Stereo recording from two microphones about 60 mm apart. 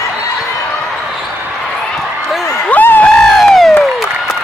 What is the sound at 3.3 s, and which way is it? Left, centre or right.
Crowd, centre.